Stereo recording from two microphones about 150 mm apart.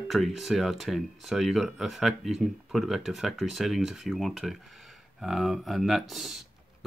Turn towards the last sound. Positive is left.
turn(degrees=0)  # may be behind; listen again after turning